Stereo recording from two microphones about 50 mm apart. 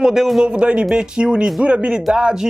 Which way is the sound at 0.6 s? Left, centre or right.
Right.